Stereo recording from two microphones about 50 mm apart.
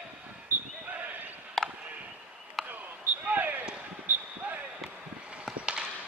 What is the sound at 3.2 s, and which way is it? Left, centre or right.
Basketball bounce, right.